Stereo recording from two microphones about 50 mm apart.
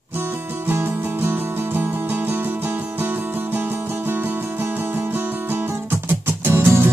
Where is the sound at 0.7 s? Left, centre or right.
Right.